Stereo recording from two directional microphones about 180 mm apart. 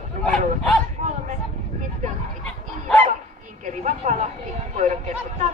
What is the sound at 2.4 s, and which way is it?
Bow-wow, 5° left (ahead or behind).